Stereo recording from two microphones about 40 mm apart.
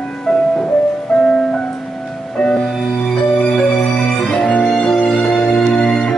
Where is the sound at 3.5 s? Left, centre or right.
Centre.